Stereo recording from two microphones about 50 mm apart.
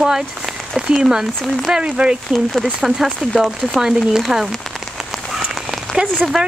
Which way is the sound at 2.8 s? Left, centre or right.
Centre.